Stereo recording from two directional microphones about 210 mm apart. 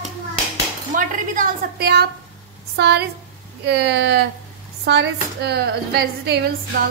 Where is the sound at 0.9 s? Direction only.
40° right (ahead or behind).